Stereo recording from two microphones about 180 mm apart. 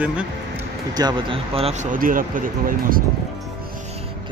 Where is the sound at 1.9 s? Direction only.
50° right (ahead or behind).